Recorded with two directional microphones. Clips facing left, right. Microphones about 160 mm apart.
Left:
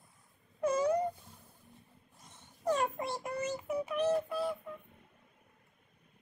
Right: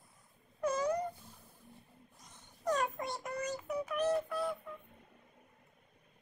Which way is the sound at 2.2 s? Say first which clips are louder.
Left 2 dB; 25° left (ahead or behind).